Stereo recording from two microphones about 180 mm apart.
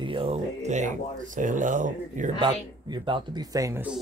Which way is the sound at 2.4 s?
25° right (ahead or behind).